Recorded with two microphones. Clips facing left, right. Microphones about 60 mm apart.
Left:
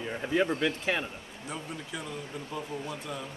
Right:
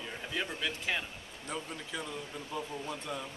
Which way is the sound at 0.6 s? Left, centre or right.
Left.